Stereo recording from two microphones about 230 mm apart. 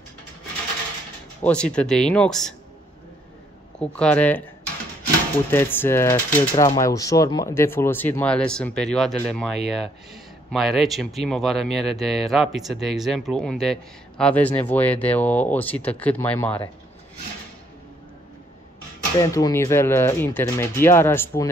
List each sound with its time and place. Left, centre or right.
1.4 s speech: centre
3.8 s speech: centre
5.5 s speech: centre
19.1 s speech: centre